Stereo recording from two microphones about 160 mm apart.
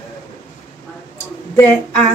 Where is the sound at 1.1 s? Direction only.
15° left (ahead or behind).